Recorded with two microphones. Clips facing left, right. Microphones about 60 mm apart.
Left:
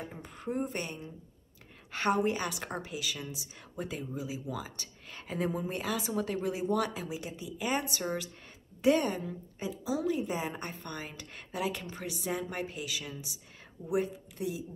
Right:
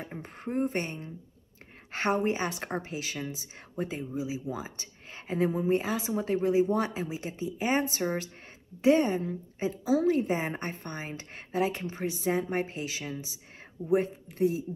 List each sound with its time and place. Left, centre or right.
0.0 s a woman's voice: right
4.0 s speech: centre; by 8.3 s right
8.8 s speech: right
9.2 s a woman's voice: right